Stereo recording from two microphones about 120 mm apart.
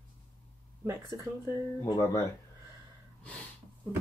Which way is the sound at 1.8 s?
25° left (ahead or behind).